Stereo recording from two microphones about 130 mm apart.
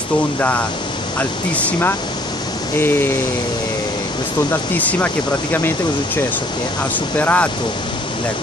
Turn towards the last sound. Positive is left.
turn(degrees=10)  # may be behind; listen again after turning